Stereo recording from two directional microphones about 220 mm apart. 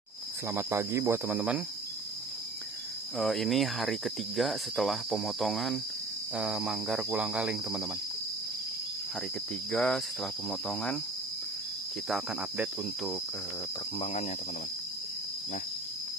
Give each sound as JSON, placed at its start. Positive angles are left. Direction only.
{"t": 0.5, "sound": "speech", "side_deg": -10}
{"t": 3.2, "sound": "cricket", "side_deg": 0}
{"t": 9.7, "sound": "cricket", "side_deg": 0}
{"t": 12.1, "sound": "cricket", "side_deg": 0}
{"t": 13.9, "sound": "speech", "side_deg": 30}